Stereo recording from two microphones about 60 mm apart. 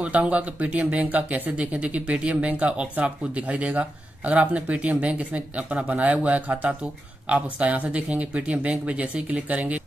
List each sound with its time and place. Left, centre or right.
0.0 s speech: right